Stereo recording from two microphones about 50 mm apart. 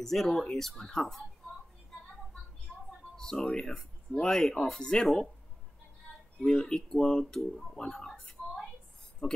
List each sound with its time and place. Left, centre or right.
0.0 s speech: centre
2.7 s a sound: centre
3.2 s speech: centre
6.4 s speech: centre